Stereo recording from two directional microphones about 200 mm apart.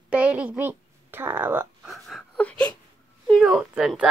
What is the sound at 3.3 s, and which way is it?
Speech, centre (ahead or behind).